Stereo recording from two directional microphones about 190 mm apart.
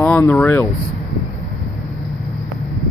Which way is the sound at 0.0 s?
10° left (ahead or behind).